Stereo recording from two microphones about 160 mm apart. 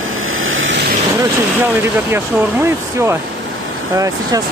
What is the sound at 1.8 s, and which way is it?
Speech, 15° right (ahead or behind).